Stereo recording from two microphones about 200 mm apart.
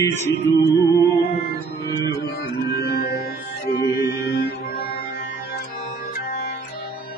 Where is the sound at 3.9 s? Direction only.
50° left (ahead or behind).